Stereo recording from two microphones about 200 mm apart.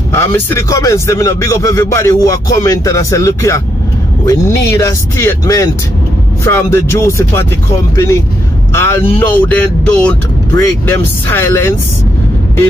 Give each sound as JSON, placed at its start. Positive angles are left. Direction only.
{"t": 0.1, "sound": "speech", "side_deg": 10}